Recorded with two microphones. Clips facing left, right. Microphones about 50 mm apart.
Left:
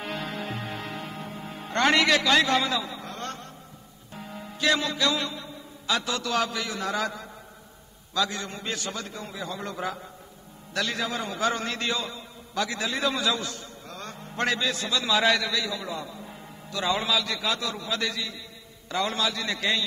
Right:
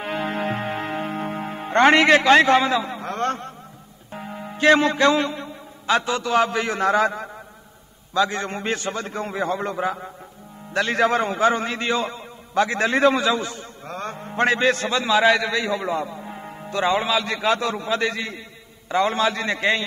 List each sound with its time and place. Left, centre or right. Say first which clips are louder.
0.0 s music: right 7 dB; right
0.3 s music: right 8 dB; right
4.1 s music: right 6 dB; right
4.6 s a man's voice: right 9 dB; right
11.0 s a man's voice: right 10 dB; right
12.0 s a man's voice: right 8 dB; right
13.8 s a man's voice: right 11 dB; right
14.6 s a man's voice: right 8 dB; right